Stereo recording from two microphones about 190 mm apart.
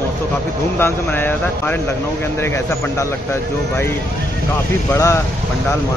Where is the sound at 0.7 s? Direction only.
10° left (ahead or behind).